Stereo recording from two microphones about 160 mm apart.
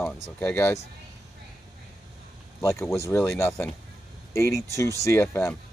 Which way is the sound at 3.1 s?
15° left (ahead or behind).